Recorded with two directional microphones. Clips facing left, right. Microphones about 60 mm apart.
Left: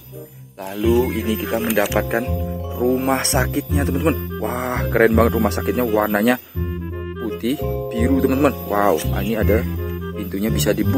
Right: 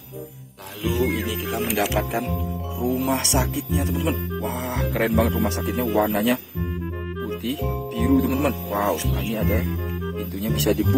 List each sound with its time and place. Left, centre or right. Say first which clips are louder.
0.7 s speech: left 6 dB; left
7.4 s speech: left 7 dB; left
9.3 s speech: left 7 dB; left